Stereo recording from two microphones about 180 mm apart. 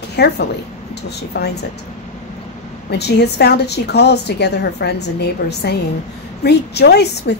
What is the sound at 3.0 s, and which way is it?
A woman's voice, 65° left (ahead or behind).